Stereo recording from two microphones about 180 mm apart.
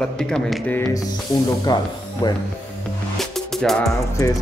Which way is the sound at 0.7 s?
20° left (ahead or behind).